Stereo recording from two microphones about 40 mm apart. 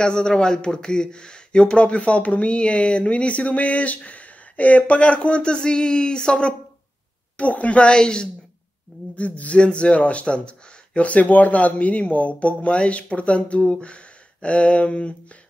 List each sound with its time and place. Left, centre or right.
0.0 s speech: left
7.3 s speech: left
9.0 s a sound: left
9.4 s speech: left
11.0 s speech: left
13.7 s a sound: left